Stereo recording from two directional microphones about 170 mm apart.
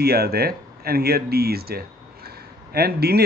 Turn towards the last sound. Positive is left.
turn(degrees=-70)  # may be behind; listen again after turning